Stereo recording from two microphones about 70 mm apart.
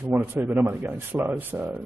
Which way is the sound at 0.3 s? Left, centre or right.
Right.